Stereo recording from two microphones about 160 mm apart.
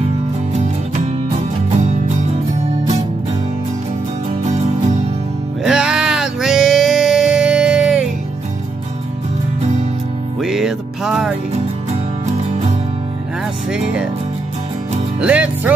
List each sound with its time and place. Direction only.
0.5 s music: 45° right (ahead or behind)
5.6 s music: 5° right (ahead or behind)
10.4 s music: centre (ahead or behind)
13.7 s music: 5° right (ahead or behind)
15.1 s music: 10° right (ahead or behind)